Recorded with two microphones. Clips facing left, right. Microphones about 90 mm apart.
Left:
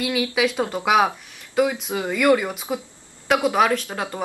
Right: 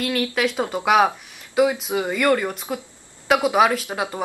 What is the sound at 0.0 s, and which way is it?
Speech, 5° left (ahead or behind).